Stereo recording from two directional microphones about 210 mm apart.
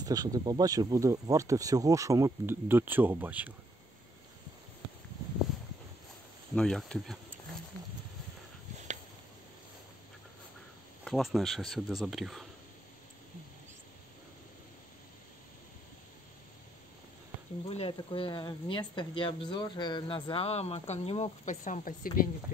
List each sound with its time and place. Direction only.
0.0 s speech: 20° right (ahead or behind)
6.5 s speech: 5° left (ahead or behind)
11.1 s speech: centre (ahead or behind)
17.6 s speech: 25° left (ahead or behind); by 22.3 s 45° left (ahead or behind)